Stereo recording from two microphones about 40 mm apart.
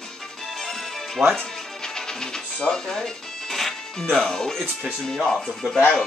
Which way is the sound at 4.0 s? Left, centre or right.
Centre.